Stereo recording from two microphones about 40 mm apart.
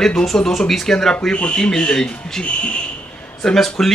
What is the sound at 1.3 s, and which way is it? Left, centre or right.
Speech, left.